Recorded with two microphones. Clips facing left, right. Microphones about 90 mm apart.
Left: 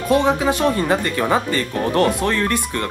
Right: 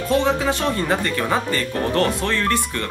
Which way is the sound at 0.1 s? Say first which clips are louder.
Left 3 dB; 15° left (ahead or behind).